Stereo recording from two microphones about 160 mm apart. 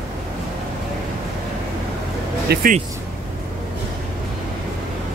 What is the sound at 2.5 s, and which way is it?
Speech, 90° right.